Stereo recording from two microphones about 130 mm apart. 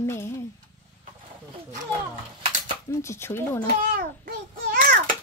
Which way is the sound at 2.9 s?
20° left (ahead or behind).